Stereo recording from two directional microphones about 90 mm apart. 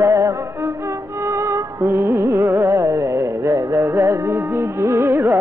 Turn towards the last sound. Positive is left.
turn(degrees=-25)  # may be behind; listen again after turning